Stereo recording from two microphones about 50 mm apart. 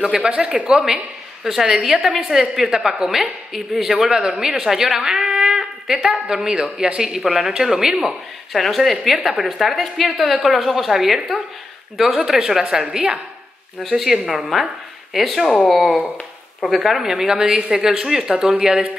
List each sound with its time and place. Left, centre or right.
0.0 s a woman's voice: centre
1.4 s a woman's voice: centre
7.0 s speech: centre
8.1 s a woman's voice: centre
13.8 s a woman's voice: centre